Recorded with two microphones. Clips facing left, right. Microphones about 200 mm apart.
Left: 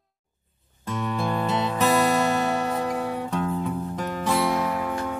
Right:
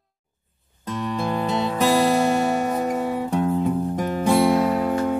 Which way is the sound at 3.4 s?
35° right (ahead or behind).